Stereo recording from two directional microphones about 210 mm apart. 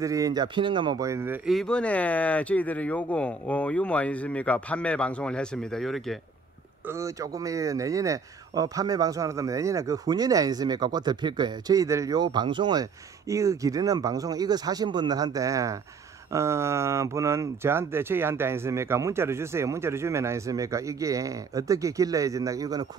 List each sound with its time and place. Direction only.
0.0 s speech: 15° right (ahead or behind); by 6.1 s centre (ahead or behind)
6.9 s speech: 15° right (ahead or behind)